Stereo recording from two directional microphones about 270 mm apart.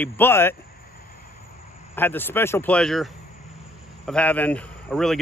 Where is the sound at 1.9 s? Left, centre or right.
Centre.